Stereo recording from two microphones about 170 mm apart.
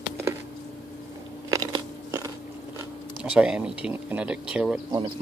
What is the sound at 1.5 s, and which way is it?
Biting, 20° right (ahead or behind).